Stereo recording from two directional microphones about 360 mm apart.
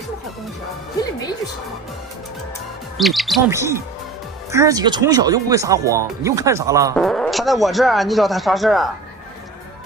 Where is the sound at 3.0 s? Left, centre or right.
Centre.